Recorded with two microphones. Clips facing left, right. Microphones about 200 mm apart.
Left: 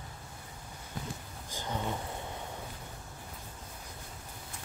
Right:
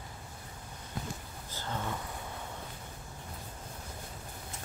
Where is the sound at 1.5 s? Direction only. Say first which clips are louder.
Left 2 dB; 15° left (ahead or behind).